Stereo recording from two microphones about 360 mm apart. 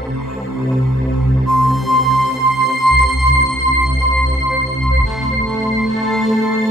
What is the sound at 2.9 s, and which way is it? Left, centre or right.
Music, right.